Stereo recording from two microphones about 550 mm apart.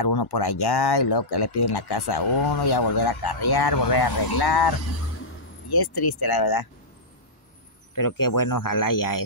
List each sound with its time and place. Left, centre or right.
0.0 s speech: left
7.9 s speech: left